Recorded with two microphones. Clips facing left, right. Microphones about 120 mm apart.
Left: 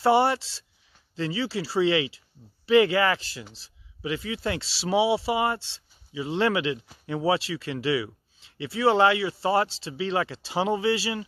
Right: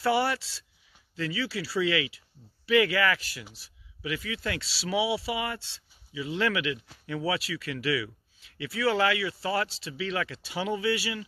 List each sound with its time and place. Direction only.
0.0 s speech: 25° left (ahead or behind)